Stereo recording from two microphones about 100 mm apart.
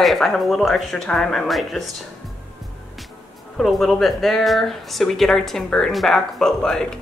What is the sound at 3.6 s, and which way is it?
Speech, centre (ahead or behind).